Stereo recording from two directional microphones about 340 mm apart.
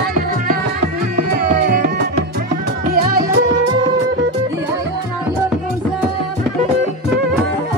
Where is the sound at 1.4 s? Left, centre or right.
Right.